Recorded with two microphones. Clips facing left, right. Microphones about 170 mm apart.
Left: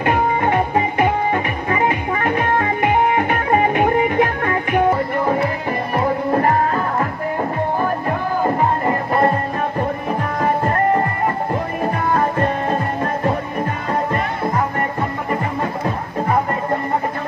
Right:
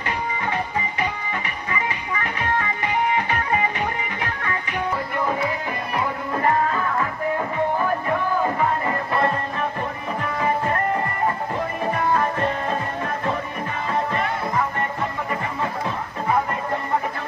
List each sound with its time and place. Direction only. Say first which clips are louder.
0.0 s music: left 9 dB; 55° left (ahead or behind)
5.7 s music: left 6 dB; 40° left (ahead or behind)
8.5 s music: left 4 dB; 50° left (ahead or behind)